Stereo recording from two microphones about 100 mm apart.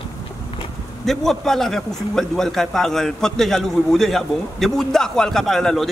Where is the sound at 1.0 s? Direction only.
5° left (ahead or behind).